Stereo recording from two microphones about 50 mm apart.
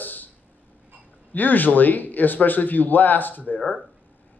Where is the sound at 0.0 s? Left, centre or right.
Left.